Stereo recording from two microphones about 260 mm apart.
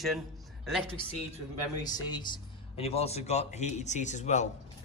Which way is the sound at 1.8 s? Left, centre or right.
Centre.